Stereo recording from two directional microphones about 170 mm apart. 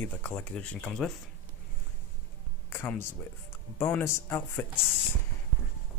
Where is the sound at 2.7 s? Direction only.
15° left (ahead or behind).